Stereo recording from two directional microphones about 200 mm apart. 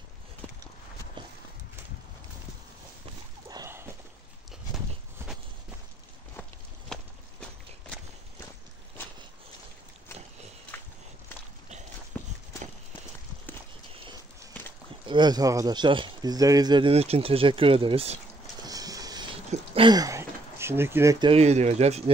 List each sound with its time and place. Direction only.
3.4 s horse: 15° right (ahead or behind)
6.9 s walk: 5° left (ahead or behind)
9.0 s a sound: 10° left (ahead or behind)
10.7 s walk: 10° left (ahead or behind)
12.1 s walk: 5° left (ahead or behind)
13.9 s walk: 25° right (ahead or behind)
15.0 s speech: 20° right (ahead or behind)
18.6 s a sound: 20° right (ahead or behind)
21.3 s speech: 35° right (ahead or behind)